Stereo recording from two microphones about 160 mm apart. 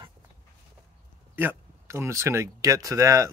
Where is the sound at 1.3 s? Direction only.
15° right (ahead or behind).